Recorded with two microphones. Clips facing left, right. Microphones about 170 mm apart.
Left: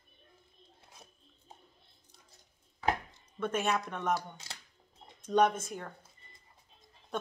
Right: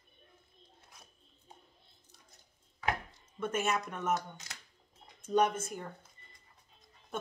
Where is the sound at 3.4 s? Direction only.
5° right (ahead or behind).